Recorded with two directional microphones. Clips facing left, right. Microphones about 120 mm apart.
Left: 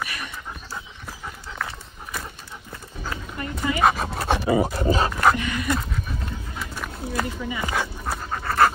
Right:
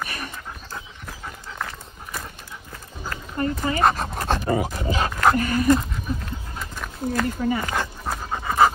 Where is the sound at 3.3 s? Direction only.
40° right (ahead or behind).